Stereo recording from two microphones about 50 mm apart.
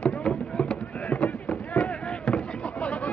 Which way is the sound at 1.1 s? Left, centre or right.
Left.